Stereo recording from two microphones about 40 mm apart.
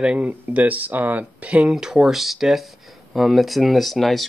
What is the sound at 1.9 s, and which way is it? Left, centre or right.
Speech, centre.